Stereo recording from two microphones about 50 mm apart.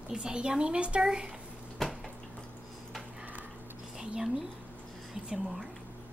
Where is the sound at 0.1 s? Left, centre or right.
Centre.